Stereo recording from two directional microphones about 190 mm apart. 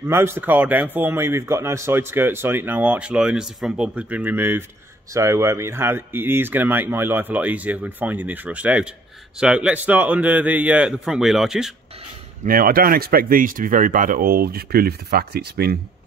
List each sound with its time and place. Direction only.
0.0 s speech: 10° right (ahead or behind)
12.4 s speech: 50° right (ahead or behind)